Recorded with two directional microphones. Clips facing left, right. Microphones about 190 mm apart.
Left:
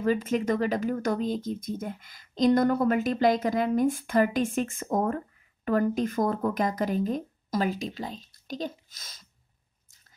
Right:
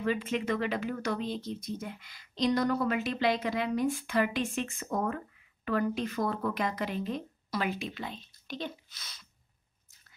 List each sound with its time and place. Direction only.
0.0 s speech: 45° left (ahead or behind)